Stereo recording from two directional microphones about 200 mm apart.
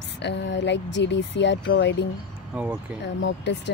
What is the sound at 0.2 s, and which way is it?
Speech, 60° left (ahead or behind).